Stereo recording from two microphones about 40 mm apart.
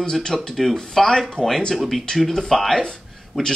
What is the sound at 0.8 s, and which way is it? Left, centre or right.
Speech, centre.